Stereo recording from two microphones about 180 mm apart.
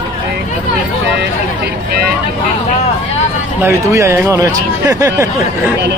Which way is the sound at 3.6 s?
15° right (ahead or behind).